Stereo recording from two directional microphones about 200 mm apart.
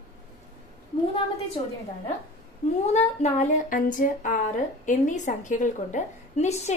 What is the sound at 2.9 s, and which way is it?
Speech, 35° left (ahead or behind).